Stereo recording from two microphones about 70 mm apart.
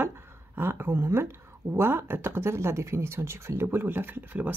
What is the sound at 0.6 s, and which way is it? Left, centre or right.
Speech, right.